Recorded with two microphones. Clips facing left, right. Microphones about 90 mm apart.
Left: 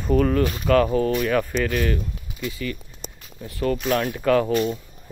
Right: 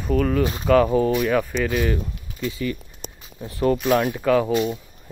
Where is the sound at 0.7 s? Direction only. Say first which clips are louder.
Right 2 dB; 10° right (ahead or behind).